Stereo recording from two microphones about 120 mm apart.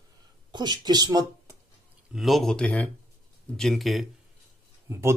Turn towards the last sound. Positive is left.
turn(degrees=-20)  # may be behind; listen again after turning